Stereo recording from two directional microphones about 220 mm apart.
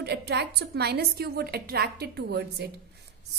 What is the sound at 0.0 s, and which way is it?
A woman's voice, 50° right (ahead or behind).